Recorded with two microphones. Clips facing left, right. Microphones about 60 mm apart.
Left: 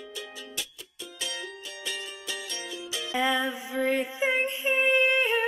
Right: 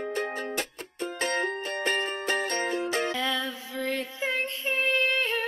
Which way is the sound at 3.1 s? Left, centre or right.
Centre.